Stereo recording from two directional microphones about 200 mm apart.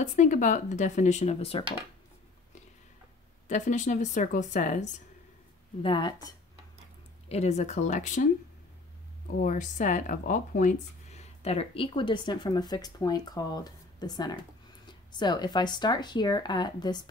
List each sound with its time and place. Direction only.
0.0 s speech: 40° left (ahead or behind)
3.4 s speech: 35° left (ahead or behind)
5.8 s speech: 25° left (ahead or behind)
7.2 s speech: 35° left (ahead or behind)
9.4 s speech: 40° left (ahead or behind); by 17.1 s 20° left (ahead or behind)